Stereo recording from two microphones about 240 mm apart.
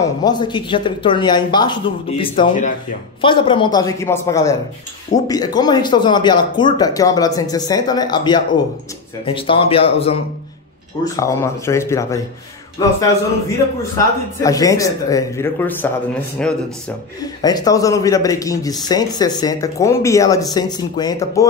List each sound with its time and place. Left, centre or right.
0.0 s speech: centre
11.1 s speech: centre
13.9 s speech: centre
17.2 s speech: centre